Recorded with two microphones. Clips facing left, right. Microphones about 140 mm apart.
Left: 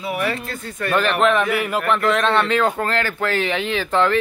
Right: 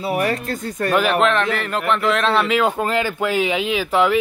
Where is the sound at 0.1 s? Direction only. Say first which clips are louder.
Right 3 dB; 40° right (ahead or behind).